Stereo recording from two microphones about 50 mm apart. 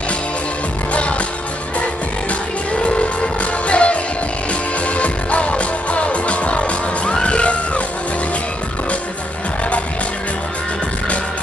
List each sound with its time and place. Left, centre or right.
2.8 s music: left